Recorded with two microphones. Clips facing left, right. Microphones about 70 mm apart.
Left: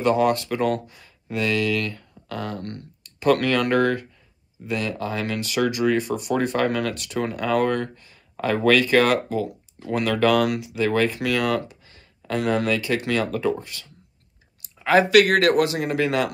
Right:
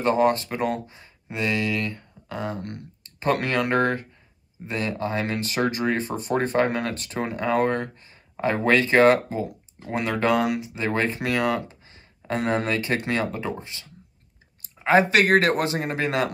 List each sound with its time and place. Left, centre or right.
0.0 s speech: right